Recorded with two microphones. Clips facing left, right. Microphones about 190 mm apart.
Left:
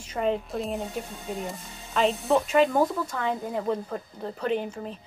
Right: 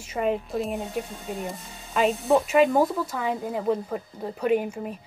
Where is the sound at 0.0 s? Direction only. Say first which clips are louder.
Right 1 dB; 5° right (ahead or behind).